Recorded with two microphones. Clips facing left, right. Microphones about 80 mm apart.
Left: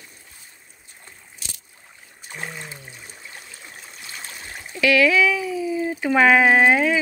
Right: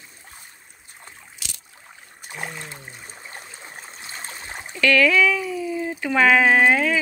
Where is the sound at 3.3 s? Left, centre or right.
Right.